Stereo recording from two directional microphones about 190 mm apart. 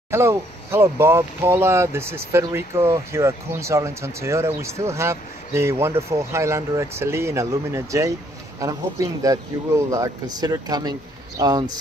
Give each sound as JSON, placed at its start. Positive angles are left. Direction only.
{"t": 0.1, "sound": "speech", "side_deg": -15}